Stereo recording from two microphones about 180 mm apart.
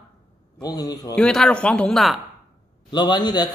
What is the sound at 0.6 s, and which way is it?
Speech, 20° left (ahead or behind).